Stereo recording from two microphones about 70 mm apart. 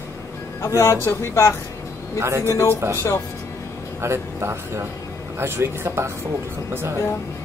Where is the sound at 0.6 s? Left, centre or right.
Left.